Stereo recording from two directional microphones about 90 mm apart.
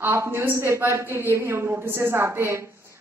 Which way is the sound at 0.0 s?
25° right (ahead or behind).